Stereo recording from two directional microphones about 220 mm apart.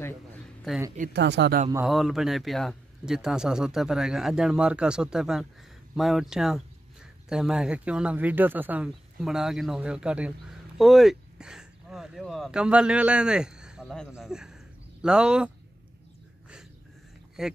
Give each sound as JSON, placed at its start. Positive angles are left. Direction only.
{"t": 0.9, "sound": "speech", "side_deg": -45}
{"t": 1.9, "sound": "speech", "side_deg": 0}
{"t": 17.4, "sound": "speech", "side_deg": -5}